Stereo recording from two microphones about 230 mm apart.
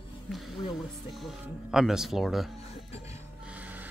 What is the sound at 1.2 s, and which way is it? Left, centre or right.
Speech, centre.